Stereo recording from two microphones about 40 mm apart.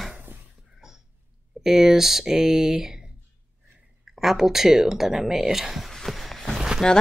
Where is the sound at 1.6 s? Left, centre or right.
Centre.